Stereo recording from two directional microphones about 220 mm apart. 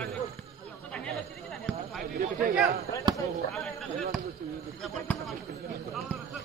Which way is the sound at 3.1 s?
20° right (ahead or behind).